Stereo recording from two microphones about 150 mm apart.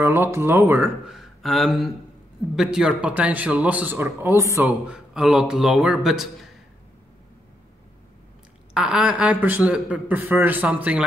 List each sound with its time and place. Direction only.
0.0 s speech: 15° right (ahead or behind)
1.1 s a man's voice: centre (ahead or behind); by 4.6 s 20° right (ahead or behind)
4.6 s a man's voice: 5° right (ahead or behind)
8.7 s a man's voice: 5° right (ahead or behind)